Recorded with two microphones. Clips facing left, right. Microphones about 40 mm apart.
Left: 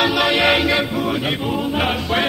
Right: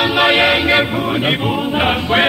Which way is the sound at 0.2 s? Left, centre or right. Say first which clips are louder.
Right 8 dB; right.